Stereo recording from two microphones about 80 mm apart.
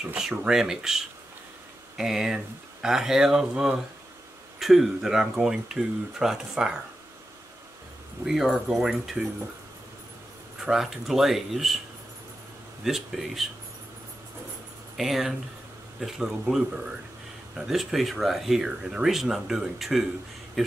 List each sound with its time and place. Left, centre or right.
0.1 s speech: centre
8.3 s speech: centre
10.6 s speech: centre
12.8 s speech: centre
15.0 s speech: centre